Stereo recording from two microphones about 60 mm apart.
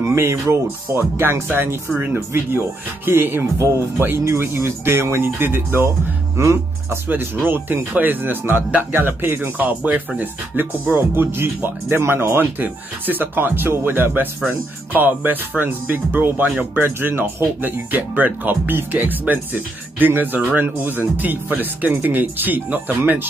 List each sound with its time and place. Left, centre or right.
0.1 s speech: right
6.3 s speech: right
7.1 s speech: right